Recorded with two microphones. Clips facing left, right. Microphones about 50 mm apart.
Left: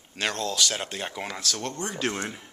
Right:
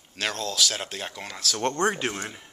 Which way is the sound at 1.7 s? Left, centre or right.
Right.